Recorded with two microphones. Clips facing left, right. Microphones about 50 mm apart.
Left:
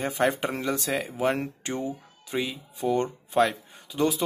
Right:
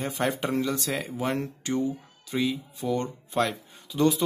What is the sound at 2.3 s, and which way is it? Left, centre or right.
Speech, left.